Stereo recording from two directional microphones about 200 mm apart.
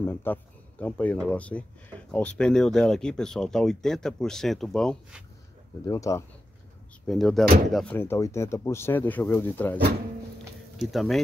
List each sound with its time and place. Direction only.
0.0 s speech: 10° left (ahead or behind)
5.9 s speech: 15° left (ahead or behind)
7.1 s speech: centre (ahead or behind)
10.8 s speech: centre (ahead or behind)